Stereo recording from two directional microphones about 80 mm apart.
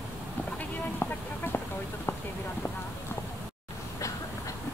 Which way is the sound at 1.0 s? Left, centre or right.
Left.